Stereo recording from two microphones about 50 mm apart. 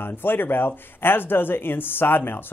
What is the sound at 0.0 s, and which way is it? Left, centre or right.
Speech, left.